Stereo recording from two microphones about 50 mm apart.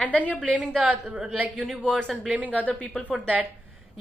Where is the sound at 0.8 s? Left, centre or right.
Centre.